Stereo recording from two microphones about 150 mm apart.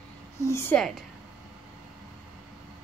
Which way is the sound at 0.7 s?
Centre (ahead or behind).